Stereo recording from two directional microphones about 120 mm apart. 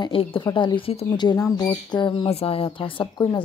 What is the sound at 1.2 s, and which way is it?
Speech, 35° left (ahead or behind).